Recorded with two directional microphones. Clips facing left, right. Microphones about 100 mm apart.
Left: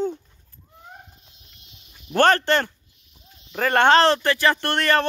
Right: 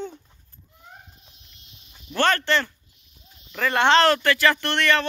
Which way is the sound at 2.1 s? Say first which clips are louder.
Left 4 dB; 45° left (ahead or behind).